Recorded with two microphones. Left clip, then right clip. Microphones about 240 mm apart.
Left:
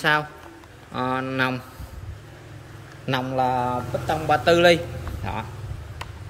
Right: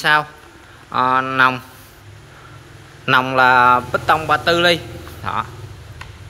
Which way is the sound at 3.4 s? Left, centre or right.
Right.